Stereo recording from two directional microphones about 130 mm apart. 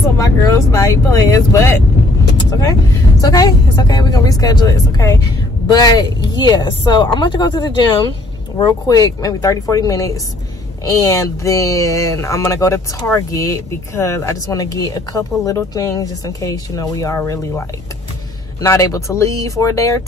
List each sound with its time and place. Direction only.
0.2 s speech: 25° left (ahead or behind)
3.2 s speech: 30° left (ahead or behind)